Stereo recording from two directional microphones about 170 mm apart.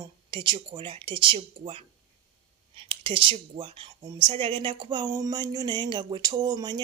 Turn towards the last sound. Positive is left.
turn(degrees=-25)  # may be behind; listen again after turning